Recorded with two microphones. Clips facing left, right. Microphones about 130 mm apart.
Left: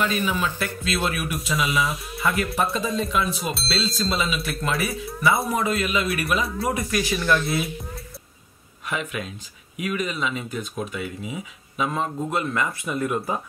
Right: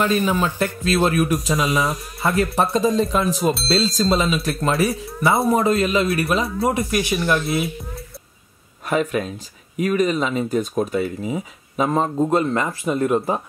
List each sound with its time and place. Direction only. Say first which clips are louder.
0.0 s speech: right 5 dB; 45° right (ahead or behind)
0.3 s speech: right 5 dB; 15° right (ahead or behind)
0.8 s speech: right 9 dB; 40° right (ahead or behind); by 7.4 s 20° right (ahead or behind)
8.8 s speech: right 8 dB; 40° right (ahead or behind)